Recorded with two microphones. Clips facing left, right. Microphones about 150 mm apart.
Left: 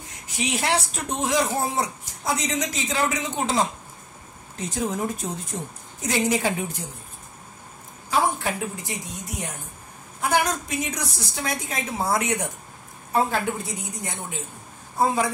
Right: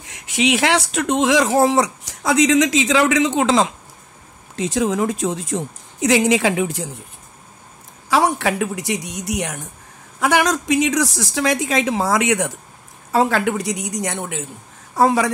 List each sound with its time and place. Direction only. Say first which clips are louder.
0.0 s speech: right 10 dB; 90° right
8.1 s a woman's voice: right 6 dB; 80° right